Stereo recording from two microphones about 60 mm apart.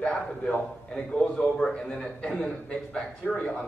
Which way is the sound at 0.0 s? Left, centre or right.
Centre.